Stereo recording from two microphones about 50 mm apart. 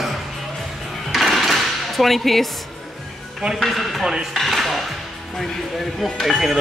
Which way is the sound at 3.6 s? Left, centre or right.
Centre.